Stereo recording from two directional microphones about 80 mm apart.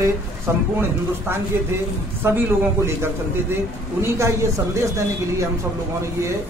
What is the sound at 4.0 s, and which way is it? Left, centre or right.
Speech, right.